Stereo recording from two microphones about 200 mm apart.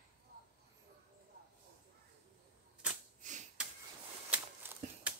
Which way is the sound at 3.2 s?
40° right (ahead or behind).